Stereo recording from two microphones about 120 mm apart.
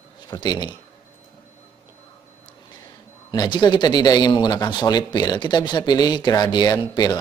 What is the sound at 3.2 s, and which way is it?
Speech, 40° left (ahead or behind).